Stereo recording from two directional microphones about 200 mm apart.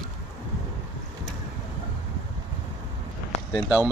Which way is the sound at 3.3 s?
35° left (ahead or behind).